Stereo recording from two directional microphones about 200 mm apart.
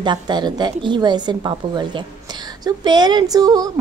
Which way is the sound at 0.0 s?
20° right (ahead or behind).